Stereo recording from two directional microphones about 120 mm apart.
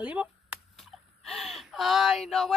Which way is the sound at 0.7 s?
Centre (ahead or behind).